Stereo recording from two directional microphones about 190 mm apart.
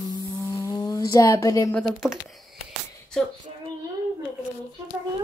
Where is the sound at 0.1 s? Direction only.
15° left (ahead or behind).